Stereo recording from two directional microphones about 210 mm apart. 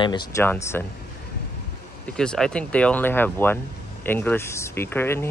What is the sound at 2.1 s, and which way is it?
Speech, 5° left (ahead or behind).